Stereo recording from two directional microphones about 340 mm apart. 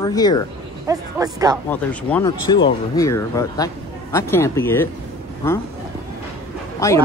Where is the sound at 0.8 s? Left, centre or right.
Centre.